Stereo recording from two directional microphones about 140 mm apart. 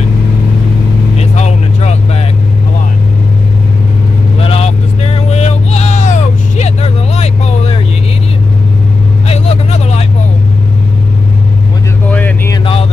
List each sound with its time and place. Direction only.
1.3 s vehicle: 55° left (ahead or behind)
4.5 s vehicle: 50° left (ahead or behind)
9.3 s vehicle: 50° left (ahead or behind)